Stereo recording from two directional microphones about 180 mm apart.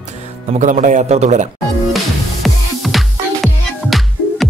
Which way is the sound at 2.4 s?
Centre (ahead or behind).